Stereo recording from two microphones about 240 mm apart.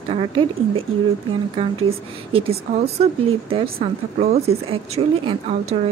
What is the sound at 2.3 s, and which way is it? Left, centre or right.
Speech, right.